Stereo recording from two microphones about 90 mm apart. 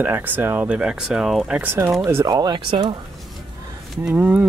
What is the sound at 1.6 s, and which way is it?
Speech, 25° right (ahead or behind).